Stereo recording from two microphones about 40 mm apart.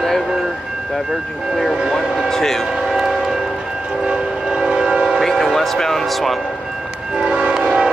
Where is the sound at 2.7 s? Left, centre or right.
Centre.